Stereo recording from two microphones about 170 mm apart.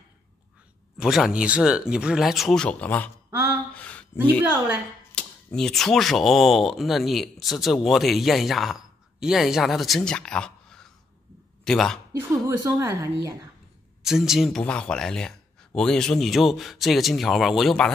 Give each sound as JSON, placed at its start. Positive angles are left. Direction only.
{"t": 0.9, "sound": "speech", "side_deg": -5}
{"t": 3.3, "sound": "a sound", "side_deg": -10}
{"t": 3.7, "sound": "a sound", "side_deg": 10}
{"t": 5.1, "sound": "speech", "side_deg": 5}
{"t": 12.1, "sound": "a woman's voice", "side_deg": -15}
{"t": 14.0, "sound": "speech", "side_deg": 0}